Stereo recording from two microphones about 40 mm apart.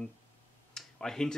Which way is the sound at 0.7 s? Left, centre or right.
Centre.